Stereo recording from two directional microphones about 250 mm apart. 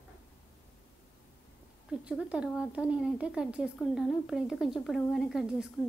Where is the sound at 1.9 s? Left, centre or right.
Centre.